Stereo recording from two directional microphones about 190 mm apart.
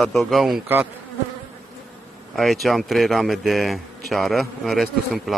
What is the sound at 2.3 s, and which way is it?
Speech, centre (ahead or behind).